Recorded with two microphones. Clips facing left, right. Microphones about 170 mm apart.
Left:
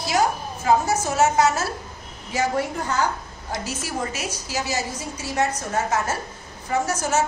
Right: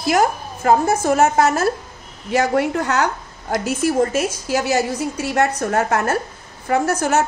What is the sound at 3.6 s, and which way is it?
A woman's voice, 50° right (ahead or behind).